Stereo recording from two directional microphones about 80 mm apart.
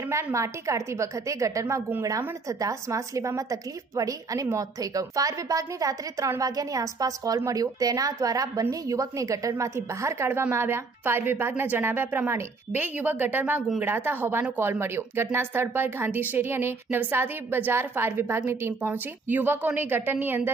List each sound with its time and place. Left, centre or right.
0.1 s a woman's voice: right